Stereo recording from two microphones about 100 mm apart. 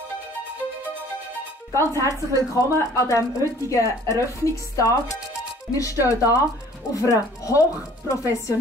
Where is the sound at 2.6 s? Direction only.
35° left (ahead or behind).